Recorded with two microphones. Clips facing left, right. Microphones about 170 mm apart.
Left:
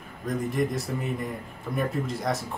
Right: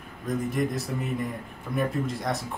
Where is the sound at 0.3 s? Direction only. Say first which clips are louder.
Even; centre (ahead or behind).